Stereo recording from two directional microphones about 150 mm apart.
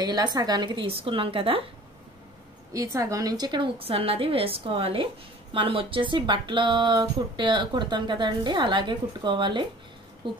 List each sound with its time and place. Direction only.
0.0 s speech: 30° right (ahead or behind)
2.7 s speech: 20° right (ahead or behind)